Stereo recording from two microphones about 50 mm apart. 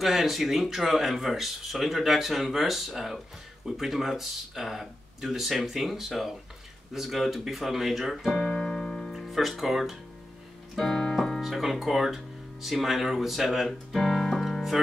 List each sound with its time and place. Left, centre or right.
0.0 s speech: centre
8.4 s keyboard: centre
8.7 s music: centre
9.1 s speech: centre
11.1 s music: centre
11.4 s speech: centre
13.7 s music: centre